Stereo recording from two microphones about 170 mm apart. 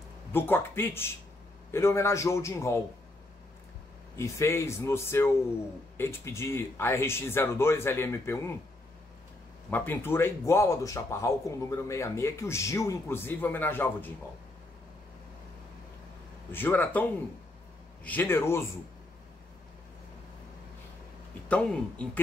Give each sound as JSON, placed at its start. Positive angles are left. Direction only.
{"t": 0.3, "sound": "speech", "side_deg": 10}
{"t": 4.2, "sound": "speech", "side_deg": 15}
{"t": 9.7, "sound": "speech", "side_deg": 10}
{"t": 16.5, "sound": "speech", "side_deg": 10}
{"t": 21.5, "sound": "speech", "side_deg": 5}